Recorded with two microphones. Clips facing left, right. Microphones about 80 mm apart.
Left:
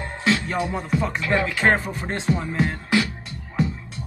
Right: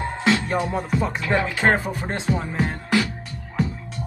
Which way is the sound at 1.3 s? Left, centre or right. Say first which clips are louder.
Even; centre.